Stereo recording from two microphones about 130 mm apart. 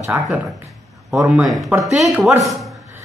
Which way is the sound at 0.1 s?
15° right (ahead or behind).